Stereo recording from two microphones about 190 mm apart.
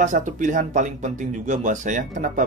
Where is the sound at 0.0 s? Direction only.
40° right (ahead or behind).